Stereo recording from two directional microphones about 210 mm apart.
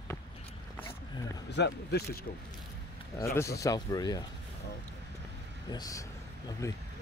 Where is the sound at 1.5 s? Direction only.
50° left (ahead or behind).